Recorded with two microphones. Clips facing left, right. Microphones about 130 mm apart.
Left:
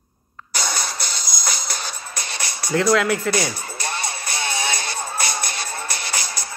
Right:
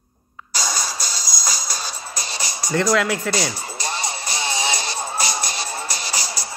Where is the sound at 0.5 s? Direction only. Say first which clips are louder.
Even; 60° left (ahead or behind).